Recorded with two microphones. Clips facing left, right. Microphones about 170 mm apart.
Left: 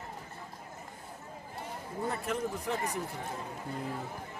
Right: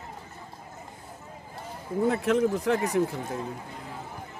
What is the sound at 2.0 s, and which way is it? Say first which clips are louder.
Speech: right 10 dB; 90° right.